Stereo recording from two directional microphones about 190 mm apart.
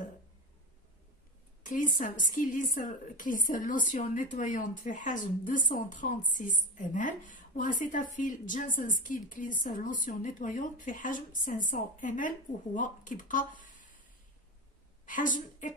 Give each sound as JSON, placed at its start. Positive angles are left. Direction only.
{"t": 1.6, "sound": "a woman's voice", "side_deg": 45}
{"t": 15.0, "sound": "a woman's voice", "side_deg": 45}